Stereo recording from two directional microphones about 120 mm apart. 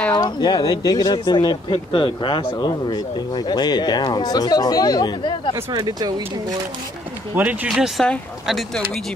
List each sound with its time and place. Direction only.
0.1 s speech: 35° left (ahead or behind)
5.7 s speech: 35° right (ahead or behind)
7.3 s speech: 10° right (ahead or behind)
7.7 s speech: centre (ahead or behind)